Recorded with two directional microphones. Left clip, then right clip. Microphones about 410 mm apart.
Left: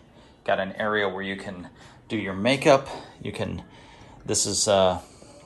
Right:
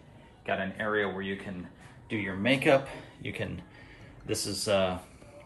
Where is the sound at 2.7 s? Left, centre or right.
Left.